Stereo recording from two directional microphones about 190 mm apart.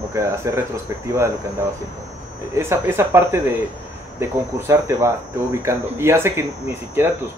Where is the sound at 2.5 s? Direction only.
15° right (ahead or behind).